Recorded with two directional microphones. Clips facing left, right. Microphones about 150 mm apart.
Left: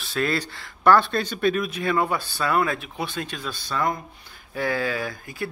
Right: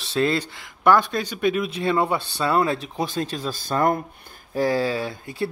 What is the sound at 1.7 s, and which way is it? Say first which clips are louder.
Speech: right 2 dB; 30° right (ahead or behind).